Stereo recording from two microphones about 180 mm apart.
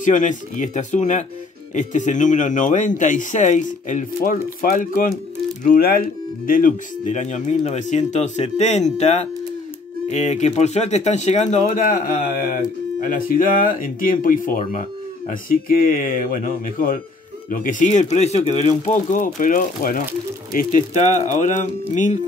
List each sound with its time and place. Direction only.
0.0 s speech: 45° left (ahead or behind)